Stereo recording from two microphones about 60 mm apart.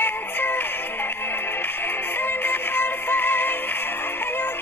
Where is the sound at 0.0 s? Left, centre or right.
Left.